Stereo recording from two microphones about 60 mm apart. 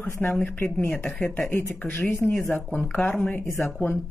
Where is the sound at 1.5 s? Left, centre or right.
Left.